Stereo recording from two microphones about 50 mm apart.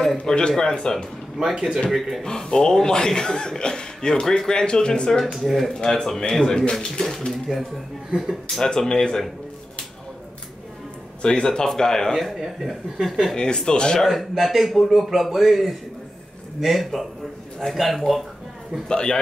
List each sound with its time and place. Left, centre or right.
0.2 s speech: centre
1.9 s speech: centre
2.2 s speech: centre
5.2 s speech: centre
7.5 s speech: centre
8.5 s speech: centre
11.2 s speech: centre
12.2 s speech: centre
13.4 s speech: centre
14.0 s speech: centre
18.9 s speech: centre